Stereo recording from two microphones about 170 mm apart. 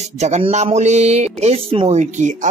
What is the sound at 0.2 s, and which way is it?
Speech, 40° right (ahead or behind).